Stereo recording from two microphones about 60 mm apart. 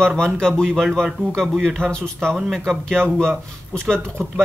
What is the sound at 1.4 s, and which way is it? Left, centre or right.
Speech, centre.